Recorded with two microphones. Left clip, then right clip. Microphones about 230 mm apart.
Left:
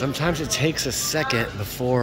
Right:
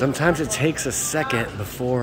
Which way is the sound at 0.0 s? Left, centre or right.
Right.